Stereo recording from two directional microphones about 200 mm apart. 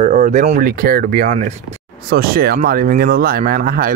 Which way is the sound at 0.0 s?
40° right (ahead or behind).